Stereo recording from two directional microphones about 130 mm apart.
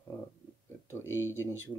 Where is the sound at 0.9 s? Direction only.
15° left (ahead or behind).